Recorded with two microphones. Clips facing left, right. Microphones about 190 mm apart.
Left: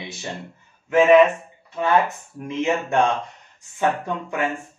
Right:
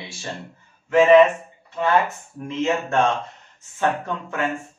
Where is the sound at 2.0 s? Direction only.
15° left (ahead or behind).